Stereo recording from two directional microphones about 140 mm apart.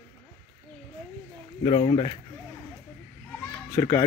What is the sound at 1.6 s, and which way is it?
Speech, 40° left (ahead or behind).